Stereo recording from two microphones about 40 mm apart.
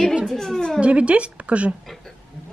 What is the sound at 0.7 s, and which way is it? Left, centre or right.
Speech, right.